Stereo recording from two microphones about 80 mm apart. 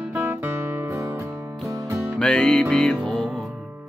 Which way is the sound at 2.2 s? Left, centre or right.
Centre.